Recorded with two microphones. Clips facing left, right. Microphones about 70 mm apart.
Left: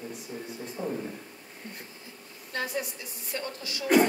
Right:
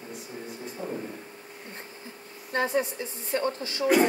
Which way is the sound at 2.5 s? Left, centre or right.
Right.